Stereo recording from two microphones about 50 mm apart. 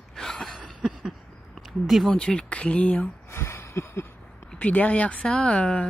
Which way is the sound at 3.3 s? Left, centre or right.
Left.